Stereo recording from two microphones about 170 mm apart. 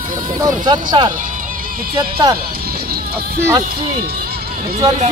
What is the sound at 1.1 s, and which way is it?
Music, 50° right (ahead or behind).